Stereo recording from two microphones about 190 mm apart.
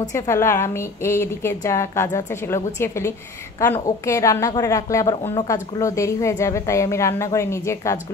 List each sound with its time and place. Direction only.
0.0 s a woman's voice: 15° left (ahead or behind)